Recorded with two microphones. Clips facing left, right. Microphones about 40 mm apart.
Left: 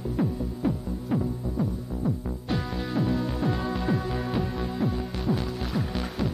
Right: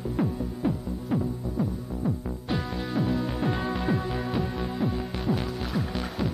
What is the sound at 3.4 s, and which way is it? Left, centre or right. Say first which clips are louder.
Music: even; centre.